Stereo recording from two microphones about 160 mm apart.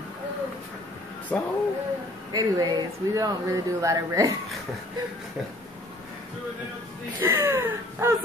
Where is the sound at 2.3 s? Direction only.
25° right (ahead or behind).